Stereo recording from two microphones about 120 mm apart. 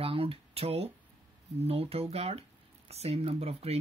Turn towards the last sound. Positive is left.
turn(degrees=-60)  # may be behind; listen again after turning